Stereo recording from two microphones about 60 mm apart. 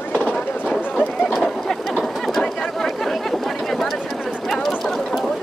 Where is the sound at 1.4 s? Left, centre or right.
Centre.